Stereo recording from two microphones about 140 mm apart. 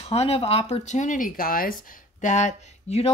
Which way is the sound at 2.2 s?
55° left (ahead or behind).